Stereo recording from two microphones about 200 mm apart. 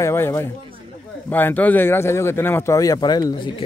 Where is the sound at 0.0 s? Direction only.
15° left (ahead or behind).